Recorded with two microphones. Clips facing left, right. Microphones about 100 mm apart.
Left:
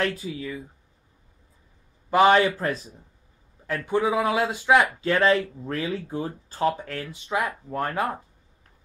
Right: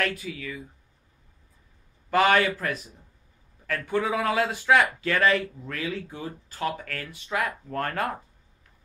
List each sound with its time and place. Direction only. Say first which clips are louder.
0.0 s a man's voice: left 2 dB; 25° left (ahead or behind)
2.0 s a man's voice: left 3 dB; 20° left (ahead or behind)